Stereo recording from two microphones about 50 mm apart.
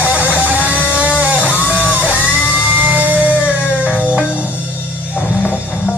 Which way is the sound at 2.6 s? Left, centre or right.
Right.